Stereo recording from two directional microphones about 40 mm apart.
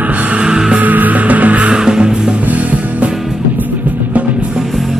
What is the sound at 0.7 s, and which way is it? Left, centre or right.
Music, right.